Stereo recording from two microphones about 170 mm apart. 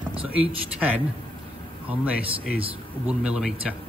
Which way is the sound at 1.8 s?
10° right (ahead or behind).